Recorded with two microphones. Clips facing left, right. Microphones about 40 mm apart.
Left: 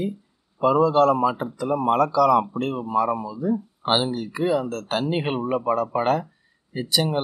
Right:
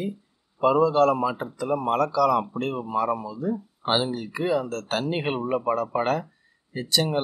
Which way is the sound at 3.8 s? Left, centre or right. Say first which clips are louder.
Left 2 dB; left.